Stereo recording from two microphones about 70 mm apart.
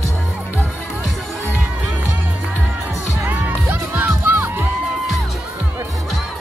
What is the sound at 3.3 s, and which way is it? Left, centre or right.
Music, right.